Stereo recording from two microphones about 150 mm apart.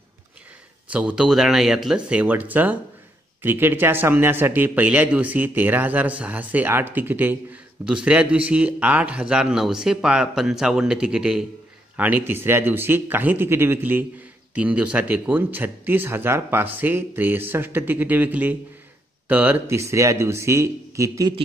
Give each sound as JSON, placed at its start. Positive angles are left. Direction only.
{"t": 0.8, "sound": "speech", "side_deg": -10}